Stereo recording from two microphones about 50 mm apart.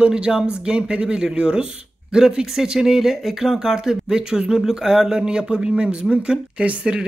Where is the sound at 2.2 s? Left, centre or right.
Centre.